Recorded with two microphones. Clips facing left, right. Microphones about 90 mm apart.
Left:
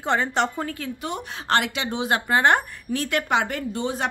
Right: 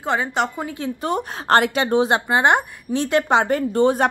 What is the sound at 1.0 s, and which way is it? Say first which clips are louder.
A woman's voice: right 7 dB; 40° right (ahead or behind).